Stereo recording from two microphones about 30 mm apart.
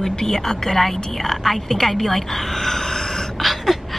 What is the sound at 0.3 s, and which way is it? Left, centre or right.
A woman's voice, centre.